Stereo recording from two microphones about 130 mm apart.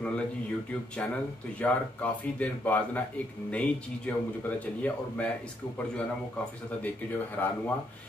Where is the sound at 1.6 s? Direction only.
10° left (ahead or behind).